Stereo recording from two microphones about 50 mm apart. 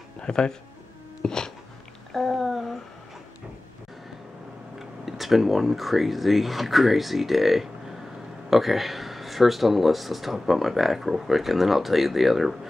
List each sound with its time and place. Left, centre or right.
0.2 s speech: centre
1.2 s a sound: centre
2.1 s speech: centre
4.7 s speech: centre